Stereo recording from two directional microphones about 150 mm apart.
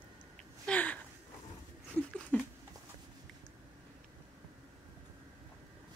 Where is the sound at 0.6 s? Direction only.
10° left (ahead or behind).